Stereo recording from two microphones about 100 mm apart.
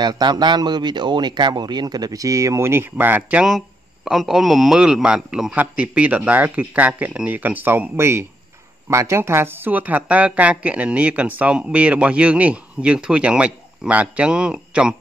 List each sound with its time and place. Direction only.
0.0 s speech: 45° right (ahead or behind); by 3.4 s 15° right (ahead or behind)
3.4 s speech: centre (ahead or behind)